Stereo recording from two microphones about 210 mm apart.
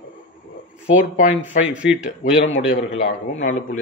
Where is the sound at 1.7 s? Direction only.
5° right (ahead or behind).